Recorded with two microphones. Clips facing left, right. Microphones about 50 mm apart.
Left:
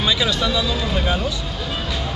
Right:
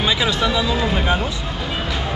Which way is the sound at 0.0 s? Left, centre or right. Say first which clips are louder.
Right 1 dB; right.